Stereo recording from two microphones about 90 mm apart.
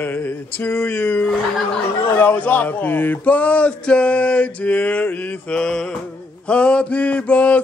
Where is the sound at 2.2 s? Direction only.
20° left (ahead or behind).